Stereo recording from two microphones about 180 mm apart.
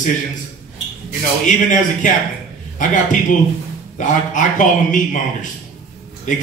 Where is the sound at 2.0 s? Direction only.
45° left (ahead or behind).